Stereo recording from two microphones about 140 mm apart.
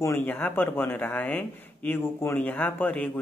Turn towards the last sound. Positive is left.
turn(degrees=10)  # may be behind; listen again after turning